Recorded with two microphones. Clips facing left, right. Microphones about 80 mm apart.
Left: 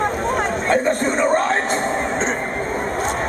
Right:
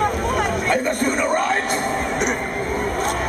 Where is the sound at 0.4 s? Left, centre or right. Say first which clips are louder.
Left 2 dB; left.